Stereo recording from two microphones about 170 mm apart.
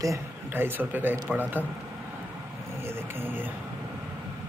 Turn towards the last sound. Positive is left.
turn(degrees=-10)  # may be behind; listen again after turning